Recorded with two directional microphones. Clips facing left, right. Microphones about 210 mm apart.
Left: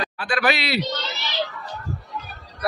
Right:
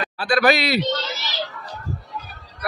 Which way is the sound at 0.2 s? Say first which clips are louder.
Right 5 dB; 40° right (ahead or behind).